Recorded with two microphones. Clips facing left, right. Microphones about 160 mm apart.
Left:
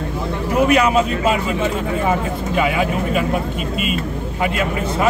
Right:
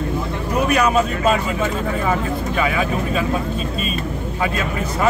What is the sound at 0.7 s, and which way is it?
Speech, 20° left (ahead or behind).